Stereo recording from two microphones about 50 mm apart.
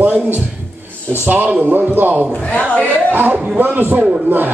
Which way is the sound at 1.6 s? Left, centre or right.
Right.